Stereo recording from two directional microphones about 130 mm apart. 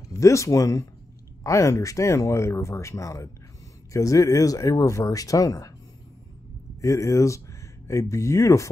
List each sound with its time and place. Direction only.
0.1 s speech: 25° left (ahead or behind)
6.8 s speech: 20° left (ahead or behind)